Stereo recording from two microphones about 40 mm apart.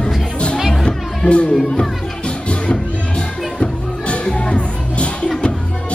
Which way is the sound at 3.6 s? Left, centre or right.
Left.